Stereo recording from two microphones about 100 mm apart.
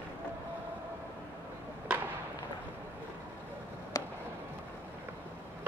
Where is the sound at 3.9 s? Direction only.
40° left (ahead or behind).